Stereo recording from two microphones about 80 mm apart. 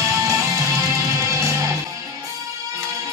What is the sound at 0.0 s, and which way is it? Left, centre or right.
Music, right.